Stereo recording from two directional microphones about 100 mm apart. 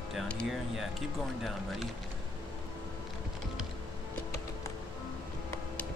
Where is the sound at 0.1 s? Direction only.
5° left (ahead or behind).